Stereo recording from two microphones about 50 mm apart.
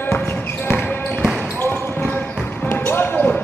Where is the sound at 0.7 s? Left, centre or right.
Left.